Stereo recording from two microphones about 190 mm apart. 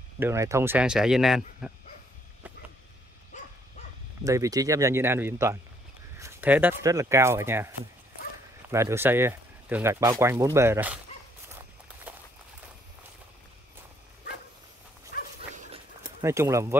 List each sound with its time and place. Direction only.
0.2 s speech: 15° right (ahead or behind)
4.2 s speech: 15° right (ahead or behind)
11.4 s walk: 10° right (ahead or behind)
15.1 s dog: 55° left (ahead or behind)
15.5 s a sound: 40° right (ahead or behind)
16.2 s speech: 15° right (ahead or behind)